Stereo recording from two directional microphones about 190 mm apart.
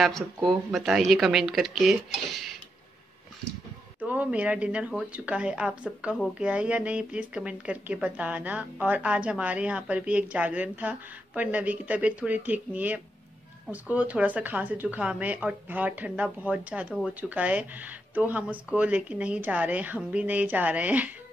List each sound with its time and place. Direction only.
0.0 s speech: centre (ahead or behind)
4.1 s speech: 5° right (ahead or behind)